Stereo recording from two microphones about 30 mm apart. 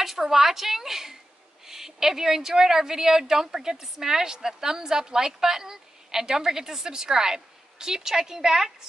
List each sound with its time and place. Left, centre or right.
0.3 s a woman's voice: centre